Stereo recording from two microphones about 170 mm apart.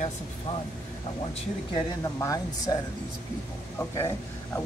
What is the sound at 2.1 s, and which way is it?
Speech, 20° left (ahead or behind).